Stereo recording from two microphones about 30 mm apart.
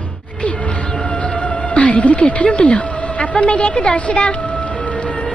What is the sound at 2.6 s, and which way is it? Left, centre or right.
Speech, left.